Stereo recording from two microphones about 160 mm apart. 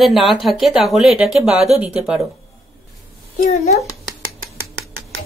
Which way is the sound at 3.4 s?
45° left (ahead or behind).